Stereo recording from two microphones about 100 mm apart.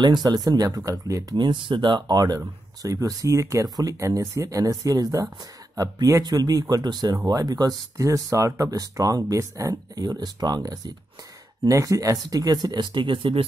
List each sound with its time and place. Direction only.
0.0 s speech: 45° right (ahead or behind)
1.3 s speech: 55° right (ahead or behind)